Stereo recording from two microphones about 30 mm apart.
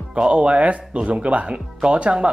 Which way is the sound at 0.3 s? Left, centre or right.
Right.